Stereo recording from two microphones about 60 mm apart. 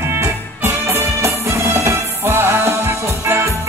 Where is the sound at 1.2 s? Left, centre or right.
Right.